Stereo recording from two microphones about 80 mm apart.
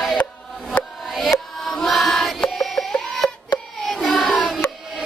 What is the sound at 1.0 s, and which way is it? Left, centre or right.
Music, centre.